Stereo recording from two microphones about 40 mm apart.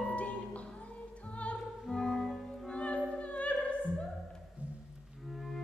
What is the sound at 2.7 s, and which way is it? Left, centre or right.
Music, left.